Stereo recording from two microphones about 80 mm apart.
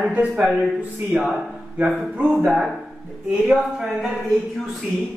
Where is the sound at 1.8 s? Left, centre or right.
Centre.